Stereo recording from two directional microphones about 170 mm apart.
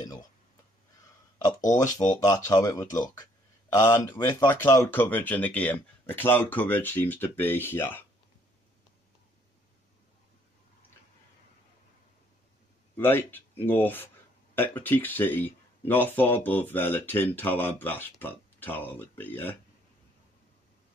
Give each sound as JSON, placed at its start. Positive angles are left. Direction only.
{"t": 1.7, "sound": "speech", "side_deg": 20}
{"t": 12.9, "sound": "speech", "side_deg": 10}